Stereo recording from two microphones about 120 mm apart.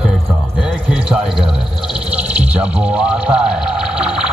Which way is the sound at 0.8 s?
5° right (ahead or behind).